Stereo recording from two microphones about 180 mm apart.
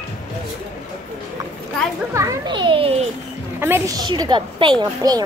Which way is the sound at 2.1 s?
20° right (ahead or behind).